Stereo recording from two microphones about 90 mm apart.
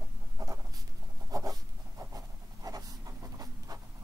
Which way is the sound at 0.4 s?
45° right (ahead or behind).